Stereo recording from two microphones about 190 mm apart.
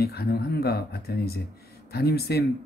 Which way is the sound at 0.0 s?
55° left (ahead or behind).